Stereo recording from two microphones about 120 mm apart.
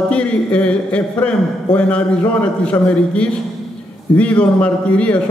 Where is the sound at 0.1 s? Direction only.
10° left (ahead or behind).